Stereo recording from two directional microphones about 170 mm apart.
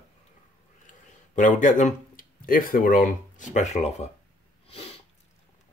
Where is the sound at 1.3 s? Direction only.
50° left (ahead or behind).